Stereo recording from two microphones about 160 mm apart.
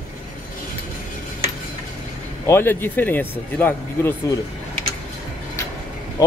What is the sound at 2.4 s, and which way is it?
Speech, 15° left (ahead or behind).